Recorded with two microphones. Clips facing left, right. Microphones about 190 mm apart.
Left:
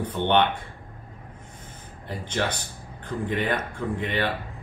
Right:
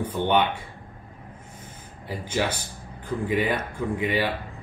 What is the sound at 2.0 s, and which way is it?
Speech, 10° right (ahead or behind).